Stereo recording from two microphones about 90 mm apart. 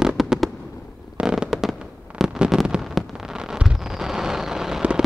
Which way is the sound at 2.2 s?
5° right (ahead or behind).